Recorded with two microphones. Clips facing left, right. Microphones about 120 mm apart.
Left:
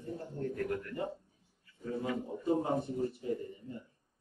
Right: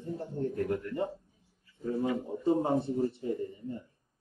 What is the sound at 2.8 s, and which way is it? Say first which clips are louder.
Speech: right 5 dB; 30° right (ahead or behind).